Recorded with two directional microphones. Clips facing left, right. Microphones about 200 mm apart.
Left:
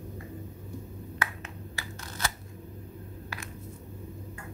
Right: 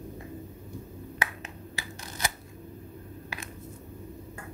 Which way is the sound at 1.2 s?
15° right (ahead or behind).